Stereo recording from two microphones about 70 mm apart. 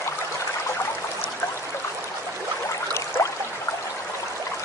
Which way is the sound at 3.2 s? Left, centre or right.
Left.